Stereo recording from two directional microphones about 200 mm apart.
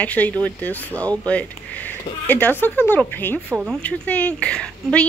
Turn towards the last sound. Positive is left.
turn(degrees=5)  # may be behind; listen again after turning